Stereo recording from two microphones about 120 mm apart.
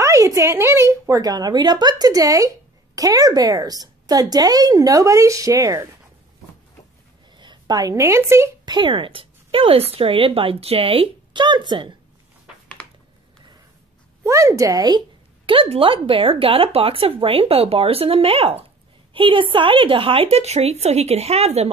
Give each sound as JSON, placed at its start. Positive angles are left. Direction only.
{"t": 0.0, "sound": "a woman's voice", "side_deg": -25}
{"t": 7.3, "sound": "a woman's voice", "side_deg": -35}
{"t": 8.6, "sound": "speech", "side_deg": -40}
{"t": 14.2, "sound": "a woman's voice", "side_deg": -25}